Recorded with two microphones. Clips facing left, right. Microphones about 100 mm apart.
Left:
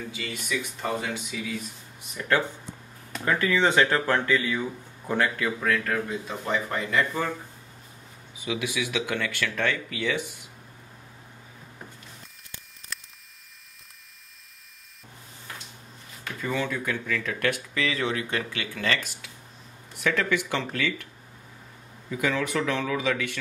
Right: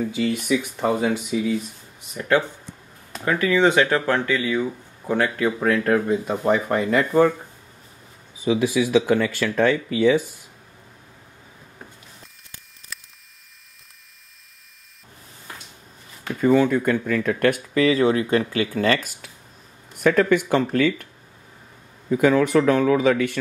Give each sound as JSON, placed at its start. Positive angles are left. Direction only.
{"t": 0.1, "sound": "speech", "side_deg": -55}
{"t": 2.1, "sound": "speech", "side_deg": -15}
{"t": 5.9, "sound": "speech", "side_deg": -50}
{"t": 8.5, "sound": "speech", "side_deg": -35}
{"t": 16.3, "sound": "speech", "side_deg": -45}
{"t": 22.1, "sound": "speech", "side_deg": -50}